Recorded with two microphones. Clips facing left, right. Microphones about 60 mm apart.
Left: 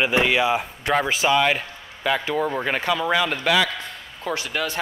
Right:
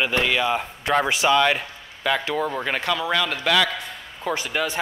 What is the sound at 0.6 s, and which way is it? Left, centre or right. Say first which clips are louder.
A man's voice: right 1 dB; centre.